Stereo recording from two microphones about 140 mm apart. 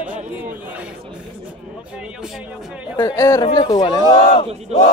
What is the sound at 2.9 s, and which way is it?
Speech, 20° left (ahead or behind).